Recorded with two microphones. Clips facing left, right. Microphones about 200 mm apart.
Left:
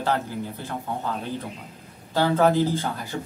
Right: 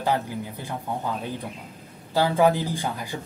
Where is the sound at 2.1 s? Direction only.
10° right (ahead or behind).